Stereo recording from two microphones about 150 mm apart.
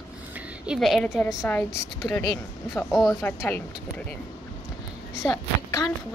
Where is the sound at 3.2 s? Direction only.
15° left (ahead or behind).